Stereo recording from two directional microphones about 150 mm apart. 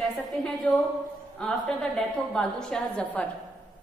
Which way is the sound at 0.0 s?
Centre (ahead or behind).